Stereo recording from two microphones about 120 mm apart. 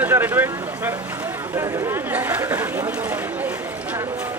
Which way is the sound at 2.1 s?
15° right (ahead or behind).